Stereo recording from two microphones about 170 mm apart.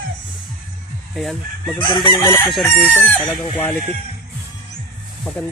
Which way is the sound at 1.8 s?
25° left (ahead or behind).